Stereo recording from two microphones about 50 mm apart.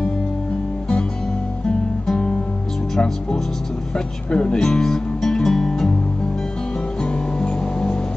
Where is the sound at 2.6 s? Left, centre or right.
Centre.